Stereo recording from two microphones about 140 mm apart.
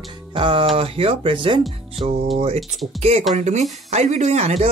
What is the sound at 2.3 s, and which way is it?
Speech, 50° right (ahead or behind).